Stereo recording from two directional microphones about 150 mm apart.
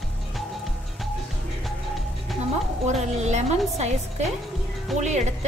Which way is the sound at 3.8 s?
50° right (ahead or behind).